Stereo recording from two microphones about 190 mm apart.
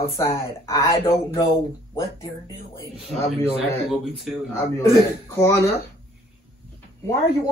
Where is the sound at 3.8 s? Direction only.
Centre (ahead or behind).